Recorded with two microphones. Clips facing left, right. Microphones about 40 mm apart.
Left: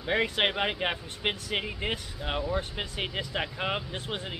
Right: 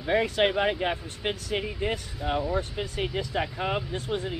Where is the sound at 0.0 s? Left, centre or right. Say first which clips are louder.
Right 3 dB; centre.